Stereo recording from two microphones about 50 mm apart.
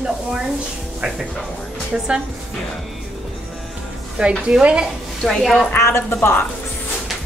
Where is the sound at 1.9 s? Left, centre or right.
Centre.